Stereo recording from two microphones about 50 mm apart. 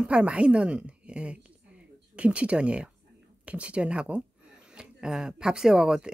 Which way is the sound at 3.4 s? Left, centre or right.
Right.